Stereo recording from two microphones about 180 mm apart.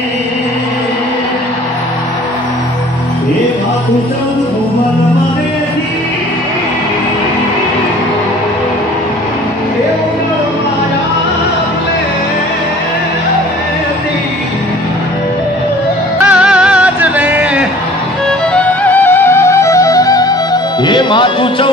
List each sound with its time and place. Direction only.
16.3 s music: 5° right (ahead or behind)
18.5 s music: 10° left (ahead or behind); by 21.6 s 25° left (ahead or behind)